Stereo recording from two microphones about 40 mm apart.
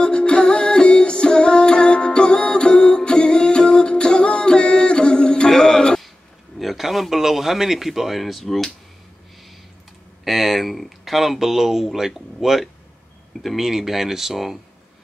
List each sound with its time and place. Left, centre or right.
0.0 s music: left
6.6 s a sound: centre
10.2 s speech: centre